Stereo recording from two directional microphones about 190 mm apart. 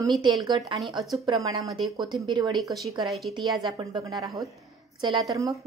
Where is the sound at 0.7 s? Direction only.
Centre (ahead or behind).